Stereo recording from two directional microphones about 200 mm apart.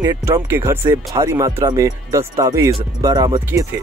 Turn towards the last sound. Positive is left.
turn(degrees=-20)  # may be behind; listen again after turning